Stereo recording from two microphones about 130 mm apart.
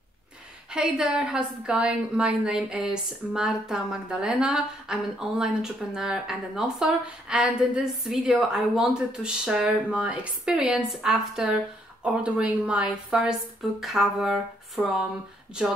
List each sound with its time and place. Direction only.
0.7 s a woman's voice: 5° right (ahead or behind)